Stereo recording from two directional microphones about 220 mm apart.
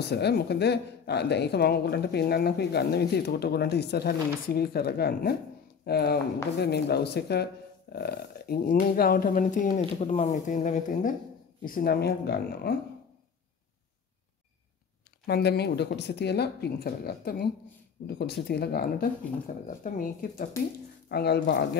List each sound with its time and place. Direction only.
0.0 s a woman's voice: 50° left (ahead or behind)
15.2 s a woman's voice: 45° left (ahead or behind)